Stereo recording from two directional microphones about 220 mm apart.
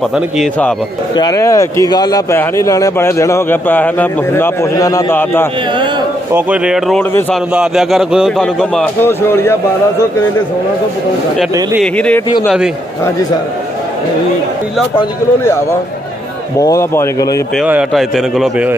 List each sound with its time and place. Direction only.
0.4 s a man's voice: 5° left (ahead or behind)
1.1 s speech: 15° left (ahead or behind)
6.3 s a man's voice: 5° right (ahead or behind)
11.8 s a man's voice: 5° left (ahead or behind)
15.0 s speech: 10° left (ahead or behind)
17.6 s a man's voice: 5° right (ahead or behind)